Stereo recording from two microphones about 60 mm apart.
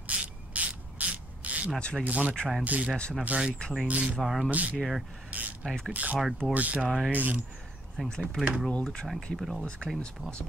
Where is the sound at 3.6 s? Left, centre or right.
Centre.